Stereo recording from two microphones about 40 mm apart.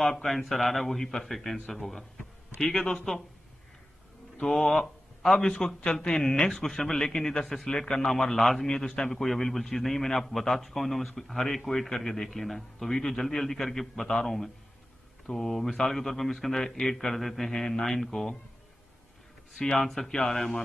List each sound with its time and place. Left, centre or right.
0.0 s a man's voice: centre
4.4 s a man's voice: centre
12.0 s a man's voice: centre
12.3 s a man's voice: centre
16.5 s a man's voice: centre
17.5 s a man's voice: centre
19.7 s a man's voice: centre
20.1 s a man's voice: centre